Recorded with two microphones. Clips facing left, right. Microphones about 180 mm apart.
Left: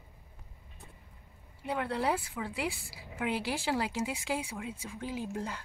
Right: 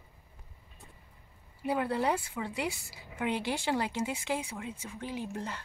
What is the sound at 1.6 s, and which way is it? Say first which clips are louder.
A woman's voice: right 2 dB; 5° right (ahead or behind).